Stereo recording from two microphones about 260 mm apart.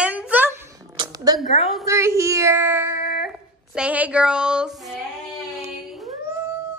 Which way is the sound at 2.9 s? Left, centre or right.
Left.